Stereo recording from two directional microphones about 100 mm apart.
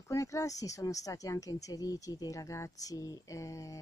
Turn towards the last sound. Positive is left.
turn(degrees=35)  # may be behind; listen again after turning